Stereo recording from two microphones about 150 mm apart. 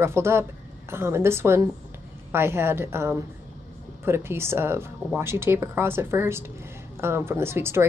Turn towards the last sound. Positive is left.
turn(degrees=-15)  # may be behind; listen again after turning